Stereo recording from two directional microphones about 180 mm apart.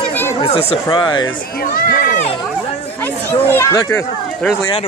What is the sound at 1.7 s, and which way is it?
Speech, 50° left (ahead or behind).